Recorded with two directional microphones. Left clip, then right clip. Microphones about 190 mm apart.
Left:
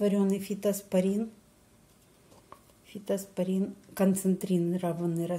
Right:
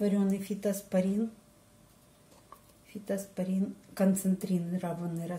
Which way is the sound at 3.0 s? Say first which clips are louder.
Left 4 dB; 50° left (ahead or behind).